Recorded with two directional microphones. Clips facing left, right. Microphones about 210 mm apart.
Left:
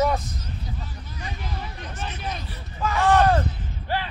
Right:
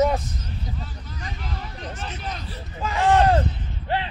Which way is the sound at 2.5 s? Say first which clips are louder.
Left 3 dB; 25° right (ahead or behind).